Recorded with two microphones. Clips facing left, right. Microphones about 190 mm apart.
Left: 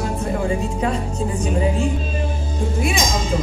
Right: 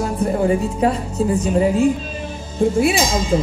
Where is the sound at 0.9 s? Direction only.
35° left (ahead or behind).